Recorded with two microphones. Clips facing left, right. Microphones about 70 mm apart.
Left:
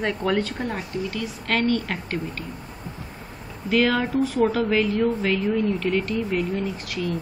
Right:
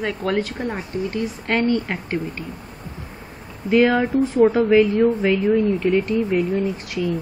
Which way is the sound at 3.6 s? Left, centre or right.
Centre.